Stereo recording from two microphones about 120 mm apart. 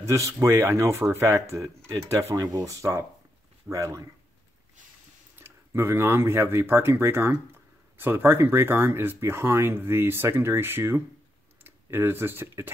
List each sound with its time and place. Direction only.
0.0 s speech: 25° right (ahead or behind)
5.4 s speech: 20° right (ahead or behind)